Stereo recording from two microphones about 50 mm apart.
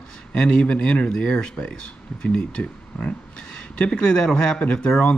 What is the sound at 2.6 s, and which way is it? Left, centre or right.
Speech, left.